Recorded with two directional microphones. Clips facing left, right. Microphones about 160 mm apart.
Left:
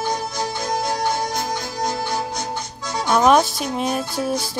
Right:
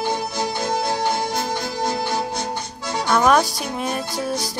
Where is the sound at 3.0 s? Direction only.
20° left (ahead or behind).